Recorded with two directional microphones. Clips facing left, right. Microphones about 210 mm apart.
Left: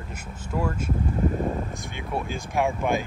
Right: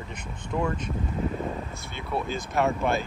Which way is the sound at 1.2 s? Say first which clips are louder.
Left 6 dB; 50° left (ahead or behind).